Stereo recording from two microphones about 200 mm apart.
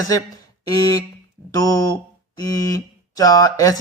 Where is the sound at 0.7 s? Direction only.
20° left (ahead or behind).